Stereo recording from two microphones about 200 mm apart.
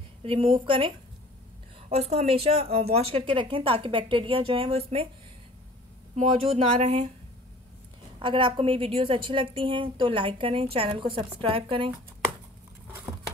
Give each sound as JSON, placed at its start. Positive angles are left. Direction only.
{"t": 0.2, "sound": "speech", "side_deg": -25}
{"t": 6.1, "sound": "speech", "side_deg": -30}
{"t": 8.2, "sound": "speech", "side_deg": -25}
{"t": 12.8, "sound": "a sound", "side_deg": -10}